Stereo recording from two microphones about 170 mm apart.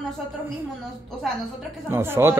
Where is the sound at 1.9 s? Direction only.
15° right (ahead or behind).